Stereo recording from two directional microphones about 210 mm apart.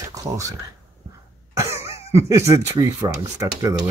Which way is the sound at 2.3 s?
15° right (ahead or behind).